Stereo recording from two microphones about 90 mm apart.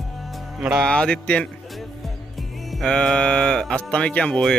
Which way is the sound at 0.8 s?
10° left (ahead or behind).